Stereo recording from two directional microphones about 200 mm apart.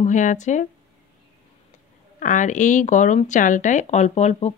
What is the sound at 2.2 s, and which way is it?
Speech, 40° left (ahead or behind).